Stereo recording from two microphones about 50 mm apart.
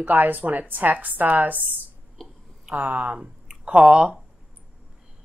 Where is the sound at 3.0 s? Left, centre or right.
Centre.